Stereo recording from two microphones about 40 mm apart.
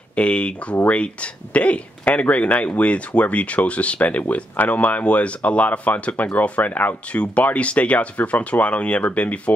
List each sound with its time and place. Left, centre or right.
0.1 s speech: left
4.6 s speech: left
7.1 s speech: left